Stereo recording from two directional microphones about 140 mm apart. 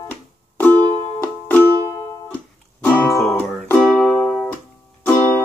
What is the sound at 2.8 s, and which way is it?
Music, 20° left (ahead or behind).